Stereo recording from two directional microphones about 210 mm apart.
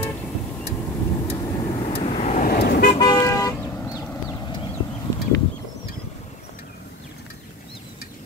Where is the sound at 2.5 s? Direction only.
50° left (ahead or behind).